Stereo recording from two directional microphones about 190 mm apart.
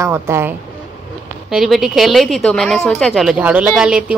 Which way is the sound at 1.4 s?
Centre (ahead or behind).